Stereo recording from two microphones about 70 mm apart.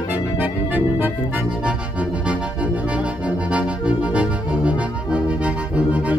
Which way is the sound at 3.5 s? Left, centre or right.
Centre.